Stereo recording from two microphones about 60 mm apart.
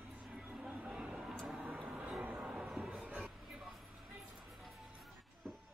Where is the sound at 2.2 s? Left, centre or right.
Right.